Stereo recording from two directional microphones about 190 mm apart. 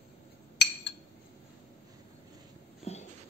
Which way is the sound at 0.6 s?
65° left (ahead or behind).